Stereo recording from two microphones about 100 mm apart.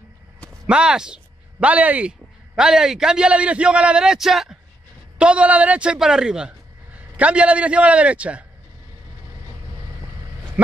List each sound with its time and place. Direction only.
0.7 s a man's voice: 10° right (ahead or behind)